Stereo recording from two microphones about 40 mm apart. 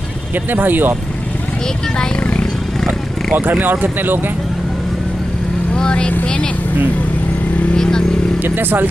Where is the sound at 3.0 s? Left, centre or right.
Centre.